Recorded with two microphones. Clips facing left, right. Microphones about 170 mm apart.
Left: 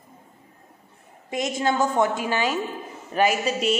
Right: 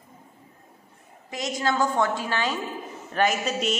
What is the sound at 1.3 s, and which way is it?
A woman's voice, 25° left (ahead or behind).